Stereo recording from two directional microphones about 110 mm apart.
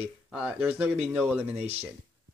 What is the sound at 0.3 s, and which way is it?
Speech, 10° right (ahead or behind).